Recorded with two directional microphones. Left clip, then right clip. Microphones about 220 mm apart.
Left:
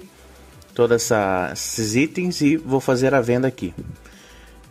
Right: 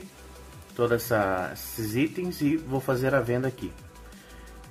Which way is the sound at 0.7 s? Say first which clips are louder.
Left 7 dB; 35° left (ahead or behind).